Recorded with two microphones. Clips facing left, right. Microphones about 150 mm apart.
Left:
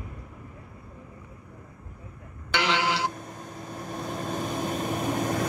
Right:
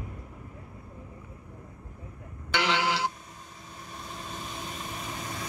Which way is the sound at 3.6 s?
45° left (ahead or behind).